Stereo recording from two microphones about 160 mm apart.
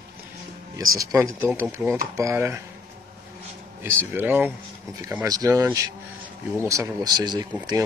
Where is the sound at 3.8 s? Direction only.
15° right (ahead or behind).